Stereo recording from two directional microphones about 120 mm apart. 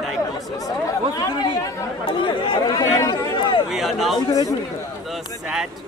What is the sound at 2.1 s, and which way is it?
Chatter, 45° left (ahead or behind).